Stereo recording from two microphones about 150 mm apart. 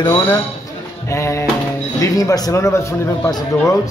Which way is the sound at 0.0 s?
25° left (ahead or behind).